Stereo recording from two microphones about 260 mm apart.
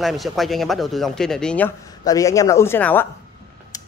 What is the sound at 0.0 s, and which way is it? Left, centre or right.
Speech, centre.